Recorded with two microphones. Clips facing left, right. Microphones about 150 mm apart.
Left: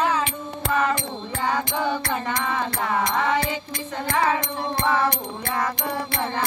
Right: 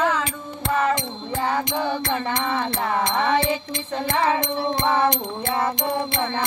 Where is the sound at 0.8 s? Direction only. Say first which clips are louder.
Right 2 dB; 25° right (ahead or behind).